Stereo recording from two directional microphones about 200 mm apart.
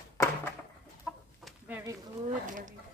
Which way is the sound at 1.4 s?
10° right (ahead or behind).